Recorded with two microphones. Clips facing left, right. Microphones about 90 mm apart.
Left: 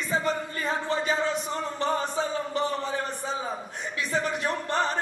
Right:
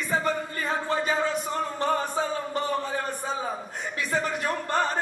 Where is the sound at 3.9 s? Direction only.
20° left (ahead or behind).